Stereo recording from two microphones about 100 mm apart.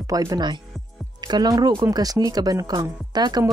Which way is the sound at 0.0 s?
35° right (ahead or behind).